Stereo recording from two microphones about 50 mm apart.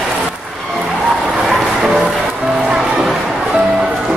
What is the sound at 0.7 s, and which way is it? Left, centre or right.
Skidding, centre.